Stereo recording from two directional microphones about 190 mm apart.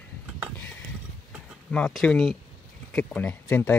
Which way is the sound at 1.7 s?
5° left (ahead or behind).